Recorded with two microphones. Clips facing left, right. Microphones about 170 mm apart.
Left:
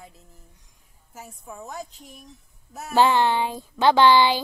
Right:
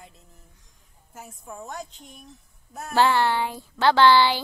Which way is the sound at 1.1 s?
Centre (ahead or behind).